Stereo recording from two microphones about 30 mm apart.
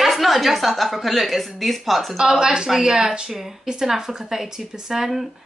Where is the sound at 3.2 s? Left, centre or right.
Centre.